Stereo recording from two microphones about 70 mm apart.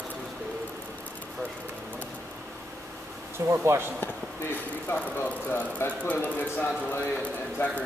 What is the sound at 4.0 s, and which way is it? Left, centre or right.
A man's voice, left.